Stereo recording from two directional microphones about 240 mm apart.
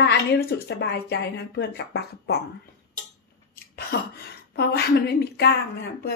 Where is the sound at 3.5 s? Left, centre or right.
Left.